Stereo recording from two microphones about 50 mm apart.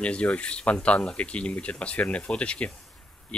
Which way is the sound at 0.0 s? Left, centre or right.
Left.